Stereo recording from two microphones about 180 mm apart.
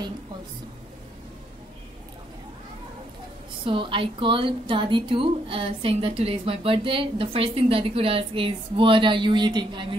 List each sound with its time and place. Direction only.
3.6 s a woman's voice: 30° right (ahead or behind)